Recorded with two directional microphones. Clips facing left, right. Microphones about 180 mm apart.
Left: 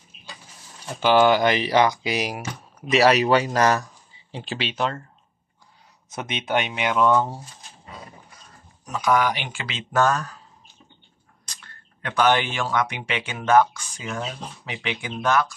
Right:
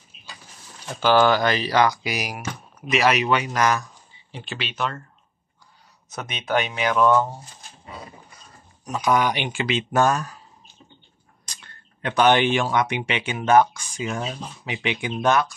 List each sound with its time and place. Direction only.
1.0 s speech: 15° left (ahead or behind)
6.1 s speech: 25° left (ahead or behind)
8.8 s speech: 20° right (ahead or behind)
11.5 s speech: 20° right (ahead or behind)